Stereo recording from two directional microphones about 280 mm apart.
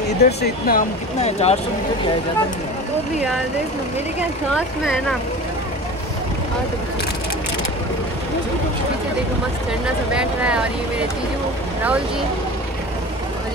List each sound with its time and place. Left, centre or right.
0.2 s speech: left
9.8 s speech: centre